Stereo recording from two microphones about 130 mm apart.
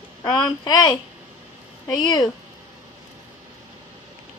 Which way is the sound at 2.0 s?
30° left (ahead or behind).